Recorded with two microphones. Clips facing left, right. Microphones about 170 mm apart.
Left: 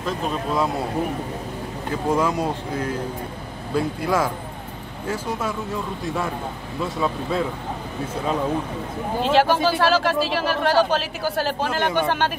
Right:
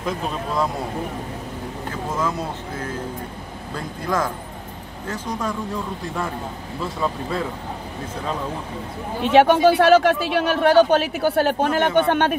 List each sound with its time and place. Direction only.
2.1 s speech: 10° left (ahead or behind)
3.7 s speech: 10° left (ahead or behind)
6.8 s speech: centre (ahead or behind)
9.3 s speech: 60° right (ahead or behind)